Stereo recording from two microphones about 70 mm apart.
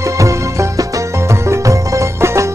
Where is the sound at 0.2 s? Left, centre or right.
Right.